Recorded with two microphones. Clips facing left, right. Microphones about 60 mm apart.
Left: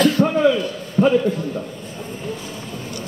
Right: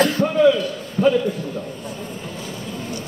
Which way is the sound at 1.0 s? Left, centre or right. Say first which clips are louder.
Left 1 dB; left.